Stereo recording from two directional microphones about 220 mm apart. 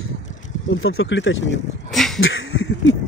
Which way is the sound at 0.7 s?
65° left (ahead or behind).